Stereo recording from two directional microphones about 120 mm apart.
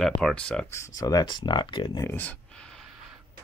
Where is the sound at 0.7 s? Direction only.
25° left (ahead or behind).